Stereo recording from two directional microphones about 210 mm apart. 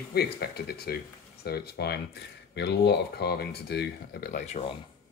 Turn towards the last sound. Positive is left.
turn(degrees=30)  # may be behind; listen again after turning